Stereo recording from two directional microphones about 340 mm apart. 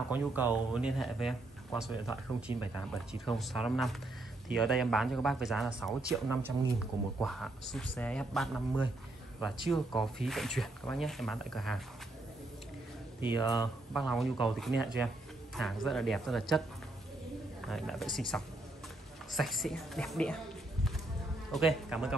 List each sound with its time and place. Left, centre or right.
0.1 s speech: centre
2.5 s speech: centre
3.3 s speech: centre
13.2 s speech: centre
13.9 s speech: centre
17.6 s speech: centre
21.5 s speech: centre